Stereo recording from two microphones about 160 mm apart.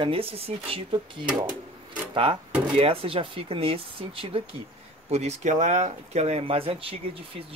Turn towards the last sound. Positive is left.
turn(degrees=-35)  # may be behind; listen again after turning